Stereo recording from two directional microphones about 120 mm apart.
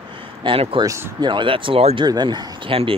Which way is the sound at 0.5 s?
45° right (ahead or behind).